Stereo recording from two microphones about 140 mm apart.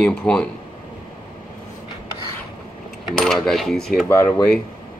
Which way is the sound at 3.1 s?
5° left (ahead or behind).